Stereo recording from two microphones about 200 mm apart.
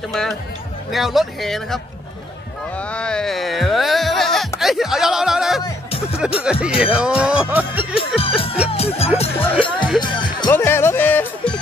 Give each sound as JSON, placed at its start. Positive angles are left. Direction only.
{"t": 0.9, "sound": "speech", "side_deg": 0}
{"t": 2.8, "sound": "a sound", "side_deg": 5}
{"t": 4.6, "sound": "speech", "side_deg": 0}
{"t": 5.6, "sound": "music", "side_deg": 30}
{"t": 6.4, "sound": "speech", "side_deg": -5}
{"t": 8.6, "sound": "music", "side_deg": 30}
{"t": 9.2, "sound": "speech", "side_deg": 30}
{"t": 10.5, "sound": "speech", "side_deg": 10}